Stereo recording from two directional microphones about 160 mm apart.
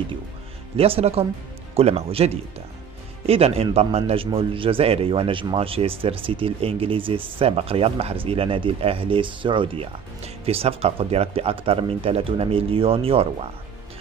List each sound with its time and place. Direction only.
0.7 s speech: 40° right (ahead or behind)